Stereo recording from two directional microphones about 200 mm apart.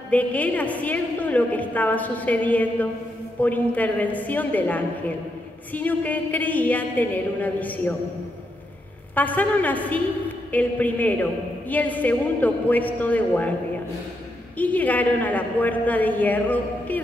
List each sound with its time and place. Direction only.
0.1 s a woman's voice: 5° left (ahead or behind)
9.1 s a woman's voice: 10° left (ahead or behind)
14.6 s a woman's voice: 10° left (ahead or behind)